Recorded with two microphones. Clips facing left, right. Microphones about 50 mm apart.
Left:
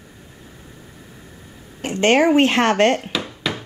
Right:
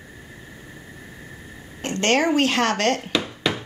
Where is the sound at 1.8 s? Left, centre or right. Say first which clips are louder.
Left 5 dB; centre.